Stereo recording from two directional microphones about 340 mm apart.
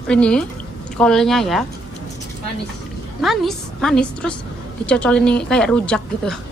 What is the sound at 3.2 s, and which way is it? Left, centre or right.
A woman's voice, centre.